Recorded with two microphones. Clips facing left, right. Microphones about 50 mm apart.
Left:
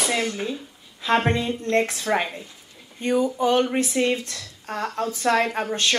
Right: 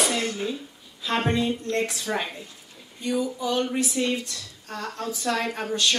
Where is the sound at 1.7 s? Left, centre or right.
Left.